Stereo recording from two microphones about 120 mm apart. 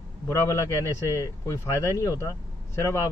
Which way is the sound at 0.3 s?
25° left (ahead or behind).